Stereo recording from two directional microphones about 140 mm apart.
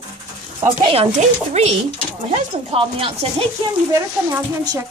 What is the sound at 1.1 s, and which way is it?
Speech, 50° right (ahead or behind).